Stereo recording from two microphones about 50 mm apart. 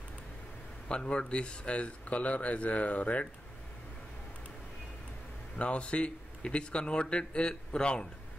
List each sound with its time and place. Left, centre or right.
0.8 s speech: centre
5.6 s speech: left